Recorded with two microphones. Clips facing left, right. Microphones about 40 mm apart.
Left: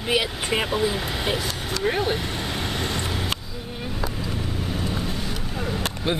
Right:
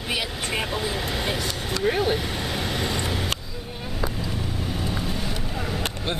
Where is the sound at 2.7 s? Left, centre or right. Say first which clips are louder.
Right 1 dB; centre.